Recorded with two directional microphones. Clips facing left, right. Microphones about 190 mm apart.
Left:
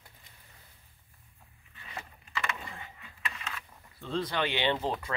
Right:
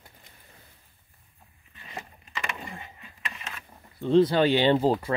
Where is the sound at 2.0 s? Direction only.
15° right (ahead or behind); by 4.9 s 35° right (ahead or behind).